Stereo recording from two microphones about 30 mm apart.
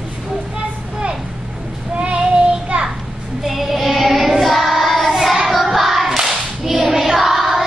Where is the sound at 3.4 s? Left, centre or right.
Centre.